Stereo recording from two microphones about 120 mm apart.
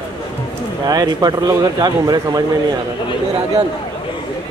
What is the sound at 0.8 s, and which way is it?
A man's voice, 35° right (ahead or behind).